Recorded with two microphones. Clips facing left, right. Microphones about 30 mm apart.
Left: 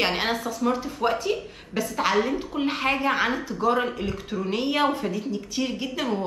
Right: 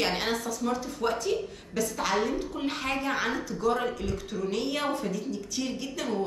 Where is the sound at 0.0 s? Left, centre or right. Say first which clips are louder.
Left 4 dB; left.